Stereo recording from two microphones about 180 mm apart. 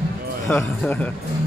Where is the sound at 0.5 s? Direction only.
5° left (ahead or behind).